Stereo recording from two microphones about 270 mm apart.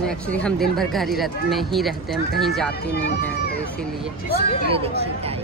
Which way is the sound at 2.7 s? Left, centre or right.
Left.